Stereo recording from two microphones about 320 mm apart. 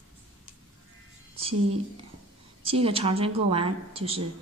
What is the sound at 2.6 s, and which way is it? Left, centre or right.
Speech, centre.